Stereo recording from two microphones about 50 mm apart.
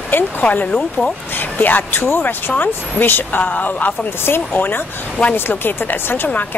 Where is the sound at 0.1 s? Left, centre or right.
Left.